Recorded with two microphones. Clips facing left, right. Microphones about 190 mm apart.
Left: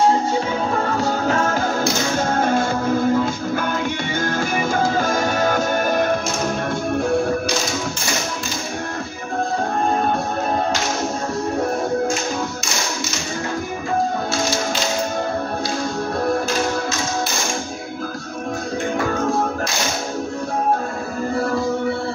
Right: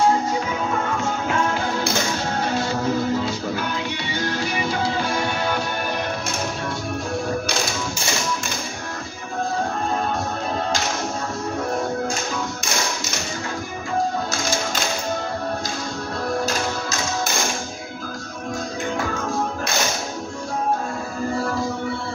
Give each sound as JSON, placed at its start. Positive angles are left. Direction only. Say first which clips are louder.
{"t": 0.7, "sound": "music", "louder": "left 4 dB", "side_deg": 35}